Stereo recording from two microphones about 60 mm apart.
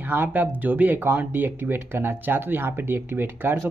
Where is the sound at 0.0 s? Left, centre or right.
Right.